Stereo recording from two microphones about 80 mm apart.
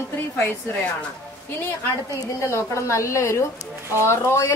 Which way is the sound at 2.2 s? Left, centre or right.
Left.